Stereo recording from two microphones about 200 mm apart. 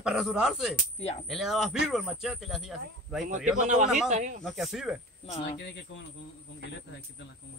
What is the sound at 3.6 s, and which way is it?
Speech, 35° right (ahead or behind).